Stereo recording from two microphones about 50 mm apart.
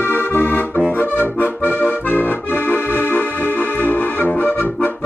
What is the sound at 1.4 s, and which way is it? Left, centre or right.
Accordion, left.